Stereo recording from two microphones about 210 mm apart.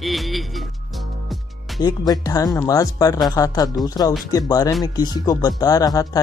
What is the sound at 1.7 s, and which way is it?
Speech, 20° left (ahead or behind).